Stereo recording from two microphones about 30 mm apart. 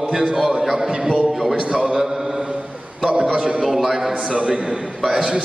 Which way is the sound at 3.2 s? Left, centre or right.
Right.